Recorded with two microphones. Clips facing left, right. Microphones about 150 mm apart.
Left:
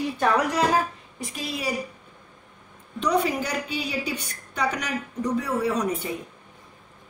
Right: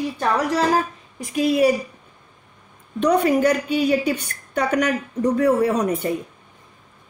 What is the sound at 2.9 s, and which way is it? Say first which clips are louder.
A woman's voice: right 6 dB; 55° right (ahead or behind).